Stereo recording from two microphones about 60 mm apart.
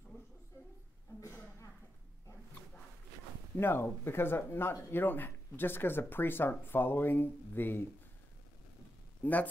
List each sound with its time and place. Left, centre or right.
0.1 s a sound: left
3.5 s speech: left
9.2 s speech: left